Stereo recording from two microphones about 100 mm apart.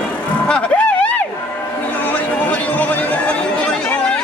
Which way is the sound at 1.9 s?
15° left (ahead or behind).